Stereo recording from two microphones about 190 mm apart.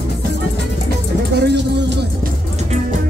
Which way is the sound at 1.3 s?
60° right (ahead or behind).